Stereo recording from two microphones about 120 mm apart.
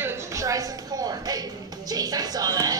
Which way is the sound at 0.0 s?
25° right (ahead or behind).